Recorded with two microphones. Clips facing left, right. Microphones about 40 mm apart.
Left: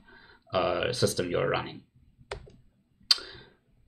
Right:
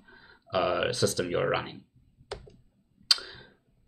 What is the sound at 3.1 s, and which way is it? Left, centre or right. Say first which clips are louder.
Tick: even; centre.